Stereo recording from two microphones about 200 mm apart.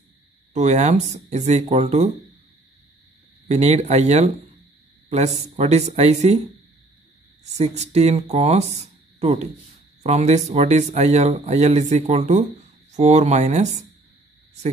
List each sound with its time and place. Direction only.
0.5 s speech: 35° right (ahead or behind)
3.4 s speech: 35° right (ahead or behind)
7.5 s speech: 35° right (ahead or behind)